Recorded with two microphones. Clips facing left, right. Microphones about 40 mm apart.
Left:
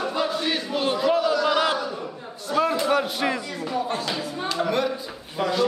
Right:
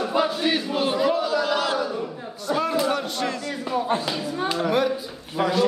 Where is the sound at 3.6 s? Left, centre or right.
Centre.